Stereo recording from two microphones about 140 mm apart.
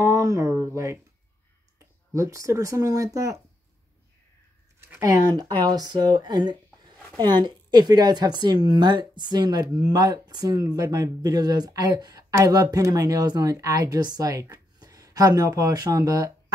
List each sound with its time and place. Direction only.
0.0 s a sound: 20° right (ahead or behind)
2.1 s speech: 20° right (ahead or behind)
4.7 s speech: 15° right (ahead or behind)